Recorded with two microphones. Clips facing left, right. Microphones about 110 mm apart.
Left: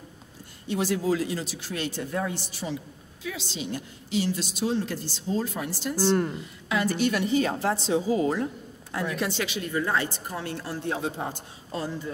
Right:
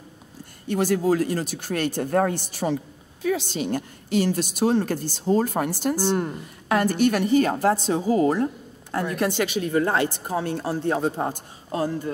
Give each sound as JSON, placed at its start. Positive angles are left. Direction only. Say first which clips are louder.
{"t": 0.7, "sound": "speech", "louder": "right 4 dB", "side_deg": -50}